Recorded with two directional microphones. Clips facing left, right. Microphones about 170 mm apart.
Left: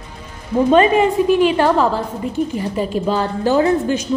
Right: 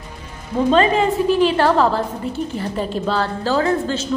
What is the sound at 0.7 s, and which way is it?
A woman's voice, 15° left (ahead or behind).